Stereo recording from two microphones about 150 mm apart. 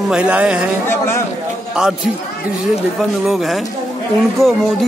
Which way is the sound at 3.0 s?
Centre (ahead or behind).